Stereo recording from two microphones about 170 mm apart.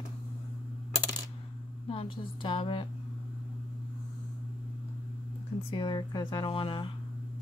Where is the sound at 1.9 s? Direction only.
30° left (ahead or behind).